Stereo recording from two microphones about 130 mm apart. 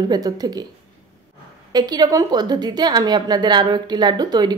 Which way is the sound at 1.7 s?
30° right (ahead or behind).